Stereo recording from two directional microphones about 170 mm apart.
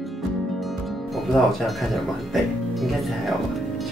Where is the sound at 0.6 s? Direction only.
Centre (ahead or behind).